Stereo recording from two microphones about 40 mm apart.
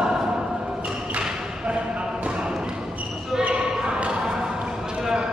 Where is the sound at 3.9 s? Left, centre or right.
Right.